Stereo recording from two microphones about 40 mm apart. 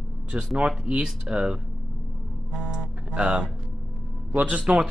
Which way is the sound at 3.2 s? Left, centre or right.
Right.